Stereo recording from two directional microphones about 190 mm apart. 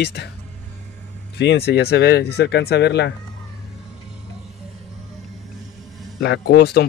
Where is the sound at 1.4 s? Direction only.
60° left (ahead or behind).